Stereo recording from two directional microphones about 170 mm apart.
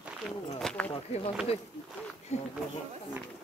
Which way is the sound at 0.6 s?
5° left (ahead or behind).